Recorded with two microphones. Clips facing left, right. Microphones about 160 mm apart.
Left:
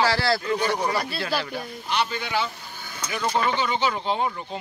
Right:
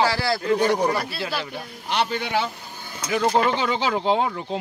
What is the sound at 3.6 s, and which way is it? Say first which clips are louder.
Speech: right 2 dB; 90° right.